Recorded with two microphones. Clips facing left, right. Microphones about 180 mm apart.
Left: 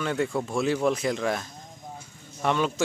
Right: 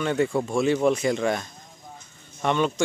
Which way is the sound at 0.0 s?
Centre (ahead or behind).